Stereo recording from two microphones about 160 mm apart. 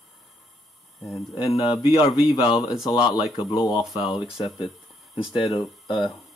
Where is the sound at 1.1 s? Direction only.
25° left (ahead or behind).